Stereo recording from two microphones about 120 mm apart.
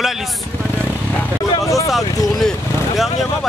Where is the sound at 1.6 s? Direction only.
25° left (ahead or behind).